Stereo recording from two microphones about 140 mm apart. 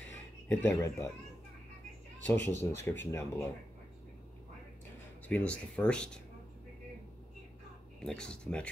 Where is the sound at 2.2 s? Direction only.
15° left (ahead or behind).